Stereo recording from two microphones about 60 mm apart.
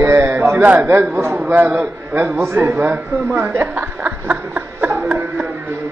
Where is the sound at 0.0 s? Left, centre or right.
Right.